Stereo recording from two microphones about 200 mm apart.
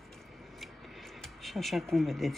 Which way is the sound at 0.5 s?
Centre (ahead or behind).